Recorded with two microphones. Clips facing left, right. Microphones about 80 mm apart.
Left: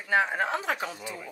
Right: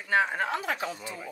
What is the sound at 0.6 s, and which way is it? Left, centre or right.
Speech, left.